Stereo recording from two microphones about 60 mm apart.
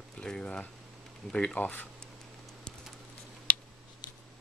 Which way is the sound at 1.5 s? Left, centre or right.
Left.